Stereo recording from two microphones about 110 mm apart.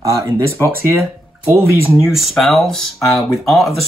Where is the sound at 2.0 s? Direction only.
Centre (ahead or behind).